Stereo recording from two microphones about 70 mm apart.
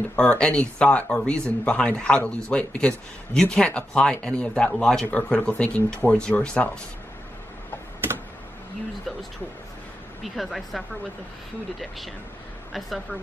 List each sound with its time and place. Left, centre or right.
0.1 s speech: centre
10.2 s speech: centre